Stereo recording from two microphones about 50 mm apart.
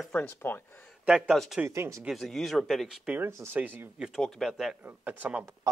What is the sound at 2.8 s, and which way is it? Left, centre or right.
Speech, centre.